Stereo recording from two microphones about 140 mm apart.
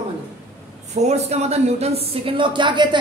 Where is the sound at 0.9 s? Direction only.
50° right (ahead or behind).